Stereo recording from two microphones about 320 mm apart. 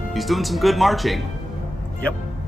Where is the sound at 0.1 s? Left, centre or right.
Centre.